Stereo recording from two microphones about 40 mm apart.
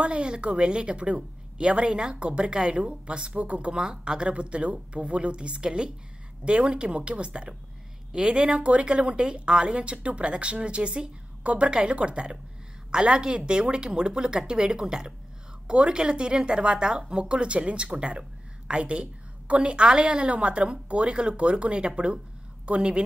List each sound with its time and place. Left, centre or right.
0.0 s a woman's voice: right